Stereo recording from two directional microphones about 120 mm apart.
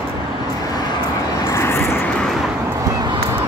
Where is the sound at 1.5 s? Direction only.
20° left (ahead or behind).